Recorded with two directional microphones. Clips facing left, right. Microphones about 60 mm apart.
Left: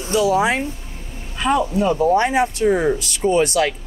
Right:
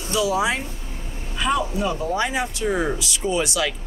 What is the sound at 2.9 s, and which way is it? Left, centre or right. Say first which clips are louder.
Speech: left 6 dB; left.